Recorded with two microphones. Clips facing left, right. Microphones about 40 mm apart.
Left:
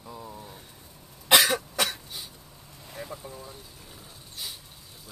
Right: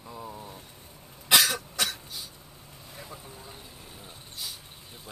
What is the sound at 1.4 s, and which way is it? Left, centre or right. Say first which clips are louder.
Cough: left 2 dB; centre.